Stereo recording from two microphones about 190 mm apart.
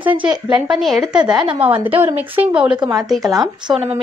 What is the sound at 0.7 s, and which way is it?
A woman's voice, centre (ahead or behind).